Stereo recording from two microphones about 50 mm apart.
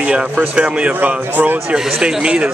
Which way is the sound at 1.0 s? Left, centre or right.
Right.